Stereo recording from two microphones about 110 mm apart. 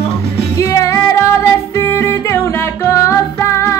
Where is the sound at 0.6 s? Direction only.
25° left (ahead or behind).